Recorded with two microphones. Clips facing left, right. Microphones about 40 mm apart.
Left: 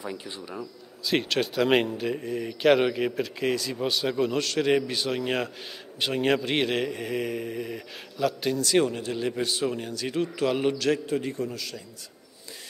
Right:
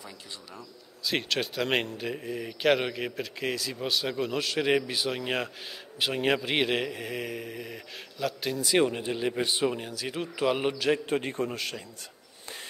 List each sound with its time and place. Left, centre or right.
0.0 s speech: left
1.0 s speech: centre
8.5 s speech: centre
9.8 s speech: centre
11.1 s a man's voice: right